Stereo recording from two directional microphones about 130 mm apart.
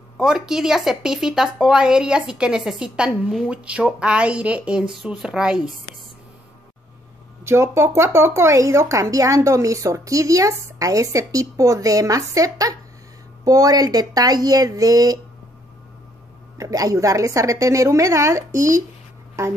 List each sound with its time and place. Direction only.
0.2 s speech: 5° right (ahead or behind)
7.4 s speech: 20° right (ahead or behind)
16.5 s speech: 25° right (ahead or behind)